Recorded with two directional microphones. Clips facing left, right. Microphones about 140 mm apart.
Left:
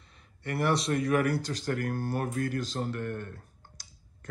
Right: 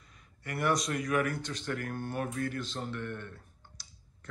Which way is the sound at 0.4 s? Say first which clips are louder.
Left 2 dB; 30° left (ahead or behind).